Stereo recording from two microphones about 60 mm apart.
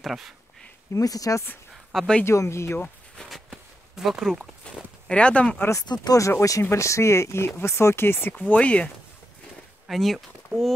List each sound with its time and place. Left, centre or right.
0.0 s speech: centre
0.9 s speech: left
1.7 s a sound: centre
2.2 s speech: left
3.9 s speech: centre
4.3 s speech: centre
5.7 s speech: left
6.7 s speech: left
8.4 s speech: left
9.8 s speech: centre